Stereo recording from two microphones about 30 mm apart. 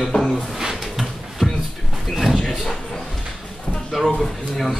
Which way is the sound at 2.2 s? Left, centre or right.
Centre.